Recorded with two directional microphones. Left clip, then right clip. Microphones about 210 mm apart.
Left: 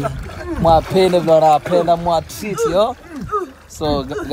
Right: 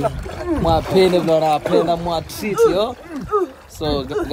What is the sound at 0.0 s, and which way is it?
Boat, 45° right (ahead or behind).